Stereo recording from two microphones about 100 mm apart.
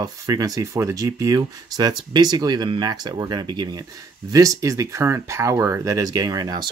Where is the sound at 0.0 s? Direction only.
40° right (ahead or behind).